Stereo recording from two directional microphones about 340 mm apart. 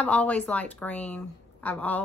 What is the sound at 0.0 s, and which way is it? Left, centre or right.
A woman's voice, centre.